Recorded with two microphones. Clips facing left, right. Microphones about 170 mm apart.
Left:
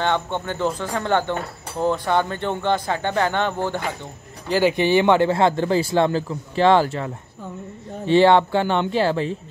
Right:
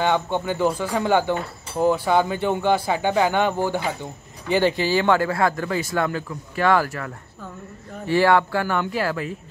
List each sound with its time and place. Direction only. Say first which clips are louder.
0.0 s speech: right 1 dB; 10° right (ahead or behind)
4.7 s a man's voice: left 3 dB; 20° left (ahead or behind)